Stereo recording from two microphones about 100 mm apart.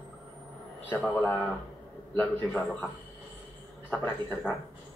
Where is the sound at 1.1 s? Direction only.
20° left (ahead or behind).